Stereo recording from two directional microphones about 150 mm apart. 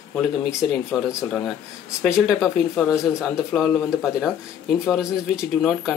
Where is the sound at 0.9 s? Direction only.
25° left (ahead or behind).